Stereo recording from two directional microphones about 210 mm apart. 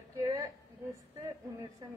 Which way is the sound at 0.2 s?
15° right (ahead or behind).